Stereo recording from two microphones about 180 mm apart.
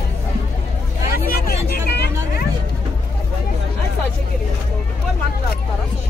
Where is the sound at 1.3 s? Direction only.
60° left (ahead or behind).